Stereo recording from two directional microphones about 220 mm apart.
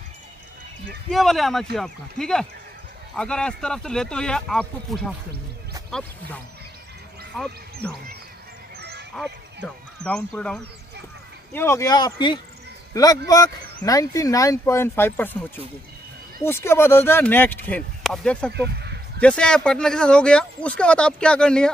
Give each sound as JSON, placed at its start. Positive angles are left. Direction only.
{"t": 1.1, "sound": "speech", "side_deg": 0}
{"t": 7.8, "sound": "speech", "side_deg": 5}
{"t": 8.7, "sound": "honk", "side_deg": -45}
{"t": 9.1, "sound": "speech", "side_deg": 0}
{"t": 18.5, "sound": "a sound", "side_deg": -50}
{"t": 19.2, "sound": "speech", "side_deg": 5}